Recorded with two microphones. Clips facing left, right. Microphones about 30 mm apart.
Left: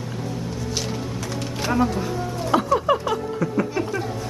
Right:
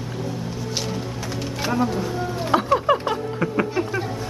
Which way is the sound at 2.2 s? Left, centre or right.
Centre.